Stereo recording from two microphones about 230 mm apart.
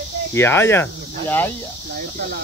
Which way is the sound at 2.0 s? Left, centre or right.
Right.